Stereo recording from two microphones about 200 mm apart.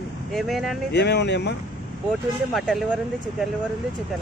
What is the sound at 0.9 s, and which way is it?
Speech, 60° left (ahead or behind).